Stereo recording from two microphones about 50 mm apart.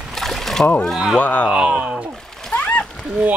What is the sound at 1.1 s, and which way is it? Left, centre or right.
Speech, left.